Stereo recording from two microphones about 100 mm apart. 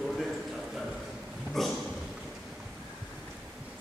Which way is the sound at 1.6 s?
Centre (ahead or behind).